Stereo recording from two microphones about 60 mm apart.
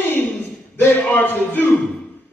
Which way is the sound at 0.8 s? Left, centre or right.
Left.